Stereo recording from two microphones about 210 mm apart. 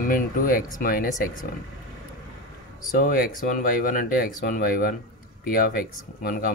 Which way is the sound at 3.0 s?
45° left (ahead or behind).